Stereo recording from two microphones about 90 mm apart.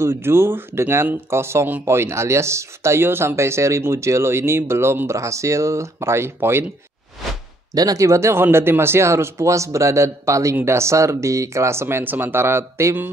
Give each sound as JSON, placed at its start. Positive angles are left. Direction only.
{"t": 0.0, "sound": "speech", "side_deg": -25}
{"t": 7.7, "sound": "speech", "side_deg": -45}